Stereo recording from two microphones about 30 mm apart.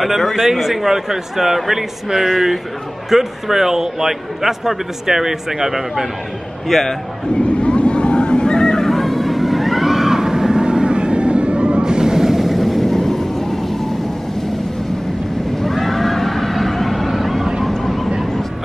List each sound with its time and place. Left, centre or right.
0.2 s speech: centre
0.5 s a man's voice: centre
6.7 s speech: centre
7.4 s neigh: left; by 11.8 s right
11.8 s vehicle: right
12.4 s vehicle: centre
15.6 s neigh: centre
17.6 s vehicle: centre